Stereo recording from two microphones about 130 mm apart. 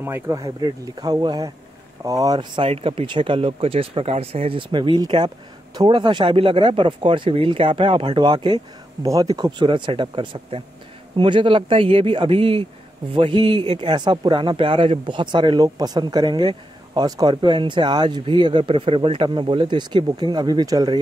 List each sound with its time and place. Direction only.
0.0 s speech: 20° right (ahead or behind)
9.7 s speech: 40° right (ahead or behind)